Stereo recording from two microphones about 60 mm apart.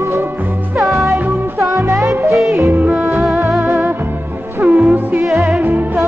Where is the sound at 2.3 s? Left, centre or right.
Centre.